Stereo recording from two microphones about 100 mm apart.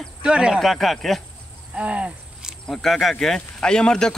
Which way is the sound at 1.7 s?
10° right (ahead or behind).